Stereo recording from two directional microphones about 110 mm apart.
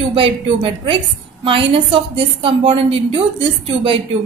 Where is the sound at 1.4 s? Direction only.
55° right (ahead or behind).